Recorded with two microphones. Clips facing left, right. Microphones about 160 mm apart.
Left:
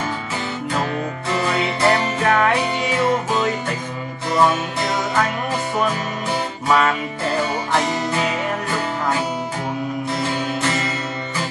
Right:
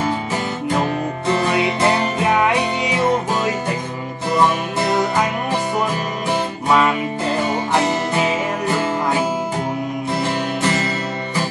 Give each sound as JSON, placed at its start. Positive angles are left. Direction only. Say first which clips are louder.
{"t": 1.5, "sound": "music", "louder": "left 2 dB", "side_deg": -15}